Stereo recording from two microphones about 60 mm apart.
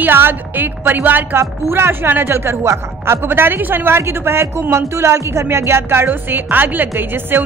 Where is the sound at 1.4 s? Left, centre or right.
Right.